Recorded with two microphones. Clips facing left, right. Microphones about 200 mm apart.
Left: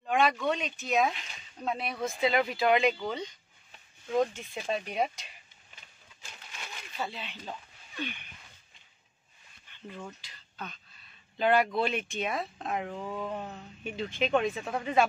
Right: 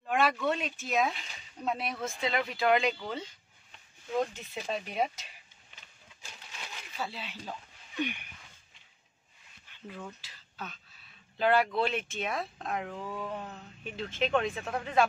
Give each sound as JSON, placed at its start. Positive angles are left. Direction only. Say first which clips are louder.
{"t": 0.1, "sound": "speech", "louder": "left 1 dB", "side_deg": -5}
{"t": 4.6, "sound": "speech", "louder": "left 2 dB", "side_deg": 0}
{"t": 7.0, "sound": "speech", "louder": "left 1 dB", "side_deg": -5}
{"t": 7.9, "sound": "a sound", "louder": "right 4 dB", "side_deg": -15}
{"t": 9.8, "sound": "speech", "louder": "left 1 dB", "side_deg": -5}
{"t": 13.0, "sound": "speech", "louder": "left 2 dB", "side_deg": 20}
{"t": 13.8, "sound": "speech", "louder": "left 1 dB", "side_deg": 0}